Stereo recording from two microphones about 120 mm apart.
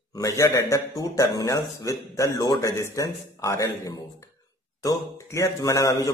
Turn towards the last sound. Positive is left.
turn(degrees=30)  # may be behind; listen again after turning